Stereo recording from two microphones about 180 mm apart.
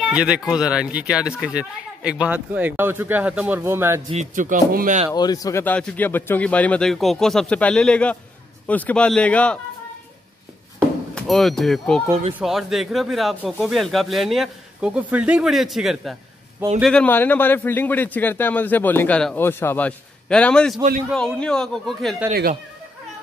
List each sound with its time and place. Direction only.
0.1 s speech: 5° right (ahead or behind)
4.1 s speech: 45° right (ahead or behind)
5.1 s a man's voice: 20° left (ahead or behind)
11.1 s a man's voice: centre (ahead or behind)
22.3 s speech: 55° right (ahead or behind)